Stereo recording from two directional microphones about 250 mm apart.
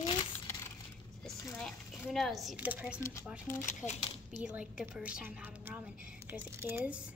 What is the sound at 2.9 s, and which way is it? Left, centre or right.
Speech, centre.